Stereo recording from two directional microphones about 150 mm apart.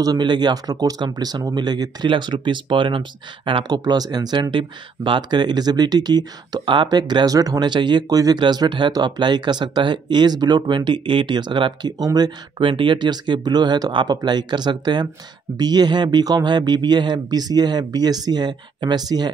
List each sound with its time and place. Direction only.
0.0 s speech: 30° right (ahead or behind)